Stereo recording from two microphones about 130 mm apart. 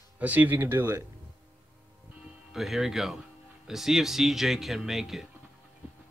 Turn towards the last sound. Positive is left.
turn(degrees=0)  # may be behind; listen again after turning